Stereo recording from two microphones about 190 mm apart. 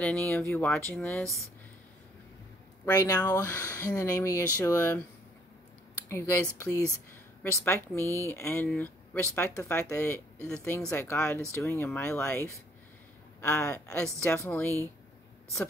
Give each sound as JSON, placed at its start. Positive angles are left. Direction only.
{"t": 0.0, "sound": "speech", "side_deg": 10}
{"t": 2.8, "sound": "speech", "side_deg": 20}
{"t": 6.0, "sound": "speech", "side_deg": 10}
{"t": 7.6, "sound": "speech", "side_deg": 10}